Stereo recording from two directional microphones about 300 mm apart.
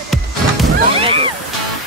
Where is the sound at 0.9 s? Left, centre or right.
Centre.